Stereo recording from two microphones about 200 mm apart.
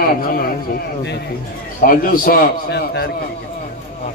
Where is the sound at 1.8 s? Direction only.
45° left (ahead or behind).